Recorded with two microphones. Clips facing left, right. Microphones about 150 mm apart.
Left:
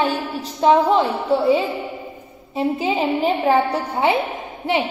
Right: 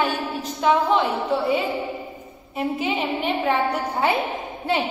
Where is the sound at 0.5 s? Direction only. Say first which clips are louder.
Left 4 dB; 35° left (ahead or behind).